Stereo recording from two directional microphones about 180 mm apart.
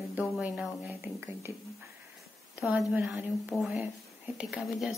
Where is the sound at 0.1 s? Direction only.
10° right (ahead or behind).